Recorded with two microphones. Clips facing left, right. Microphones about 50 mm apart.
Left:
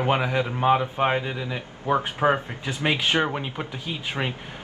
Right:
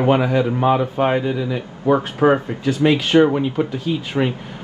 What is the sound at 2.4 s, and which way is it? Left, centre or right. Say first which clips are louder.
A man's voice: right 9 dB; left.